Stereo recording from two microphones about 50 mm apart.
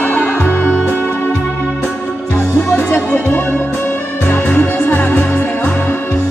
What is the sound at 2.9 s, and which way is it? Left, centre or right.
Music, left.